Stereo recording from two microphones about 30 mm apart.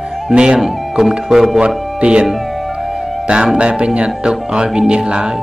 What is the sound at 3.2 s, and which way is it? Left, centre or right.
Speech, right.